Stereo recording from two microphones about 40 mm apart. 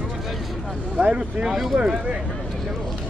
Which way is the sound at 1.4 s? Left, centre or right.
Centre.